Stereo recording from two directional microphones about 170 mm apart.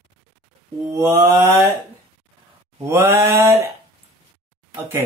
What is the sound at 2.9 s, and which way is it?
Speech, 15° right (ahead or behind).